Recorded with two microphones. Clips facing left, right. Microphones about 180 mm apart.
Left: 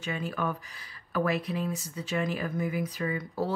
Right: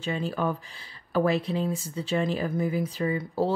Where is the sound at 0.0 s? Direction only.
30° right (ahead or behind).